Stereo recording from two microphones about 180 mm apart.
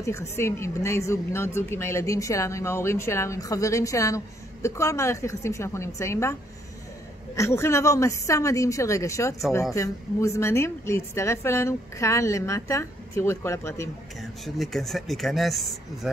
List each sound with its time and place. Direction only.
0.0 s a woman's voice: 15° left (ahead or behind)
7.3 s a woman's voice: 15° left (ahead or behind)
14.2 s speech: centre (ahead or behind)